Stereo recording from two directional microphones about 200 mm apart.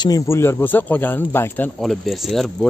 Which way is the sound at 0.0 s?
15° left (ahead or behind).